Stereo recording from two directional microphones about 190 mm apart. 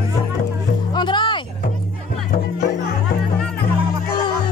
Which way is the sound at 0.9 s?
25° left (ahead or behind).